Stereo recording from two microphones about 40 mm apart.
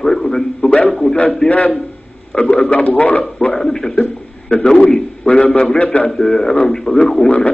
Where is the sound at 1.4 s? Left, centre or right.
Left.